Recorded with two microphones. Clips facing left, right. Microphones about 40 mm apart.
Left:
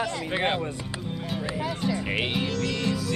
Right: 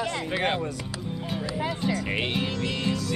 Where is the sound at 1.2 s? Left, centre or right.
Centre.